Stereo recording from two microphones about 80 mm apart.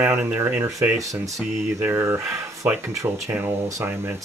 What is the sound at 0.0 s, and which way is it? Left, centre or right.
Speech, right.